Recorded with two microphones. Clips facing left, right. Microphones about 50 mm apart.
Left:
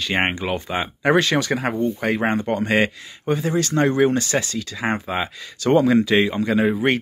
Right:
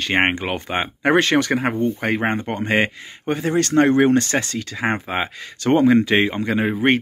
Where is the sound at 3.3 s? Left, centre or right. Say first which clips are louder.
Right 2 dB; right.